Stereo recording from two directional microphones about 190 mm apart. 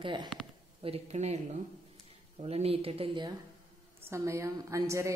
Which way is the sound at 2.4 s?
30° right (ahead or behind).